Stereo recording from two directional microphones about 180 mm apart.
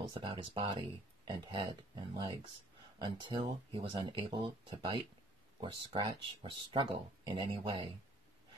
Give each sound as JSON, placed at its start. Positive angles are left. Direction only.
{"t": 0.1, "sound": "speech", "side_deg": -30}